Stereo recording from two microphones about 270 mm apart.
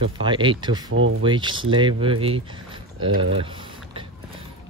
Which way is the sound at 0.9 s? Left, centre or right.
Right.